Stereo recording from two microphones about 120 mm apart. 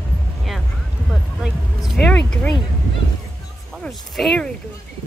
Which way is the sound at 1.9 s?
5° left (ahead or behind).